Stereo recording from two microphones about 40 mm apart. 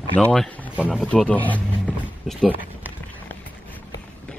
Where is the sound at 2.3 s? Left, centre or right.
Centre.